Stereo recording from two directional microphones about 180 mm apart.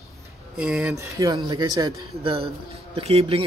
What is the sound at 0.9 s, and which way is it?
Speech, 20° right (ahead or behind).